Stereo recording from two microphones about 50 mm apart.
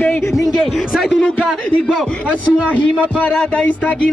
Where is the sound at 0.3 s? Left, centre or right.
Centre.